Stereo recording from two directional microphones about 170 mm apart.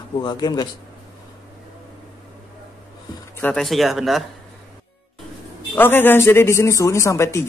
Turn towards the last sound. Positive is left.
turn(degrees=15)  # may be behind; listen again after turning